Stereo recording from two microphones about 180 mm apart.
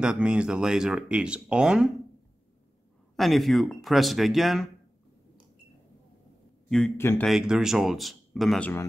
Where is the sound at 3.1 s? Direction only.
Centre (ahead or behind).